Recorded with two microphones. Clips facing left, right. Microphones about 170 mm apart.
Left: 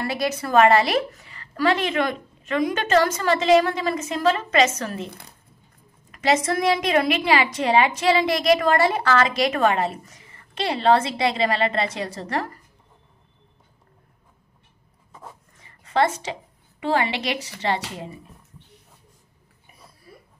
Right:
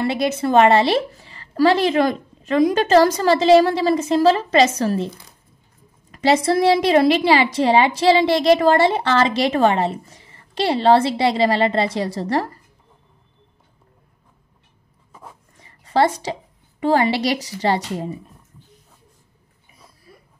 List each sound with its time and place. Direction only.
0.0 s a woman's voice: 25° right (ahead or behind)
6.1 s a woman's voice: 30° right (ahead or behind)
15.8 s a woman's voice: 35° right (ahead or behind)